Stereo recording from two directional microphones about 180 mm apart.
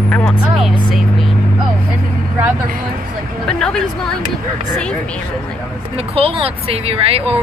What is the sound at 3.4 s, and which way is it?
Speech, 5° left (ahead or behind).